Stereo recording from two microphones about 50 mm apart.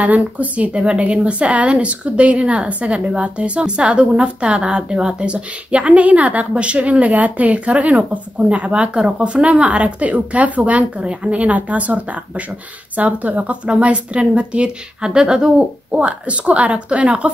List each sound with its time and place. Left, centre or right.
0.0 s speech: right